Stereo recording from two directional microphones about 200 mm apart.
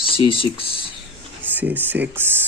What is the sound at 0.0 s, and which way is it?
Speech, 25° left (ahead or behind).